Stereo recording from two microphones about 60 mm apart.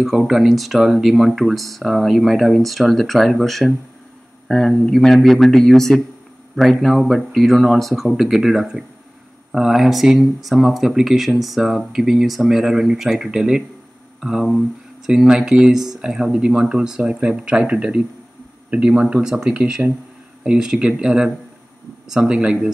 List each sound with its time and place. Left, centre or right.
0.0 s speech: centre
22.3 s speech: centre